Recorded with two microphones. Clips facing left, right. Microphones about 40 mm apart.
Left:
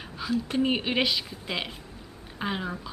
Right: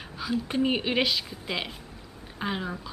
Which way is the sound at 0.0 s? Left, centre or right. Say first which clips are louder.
Even; centre.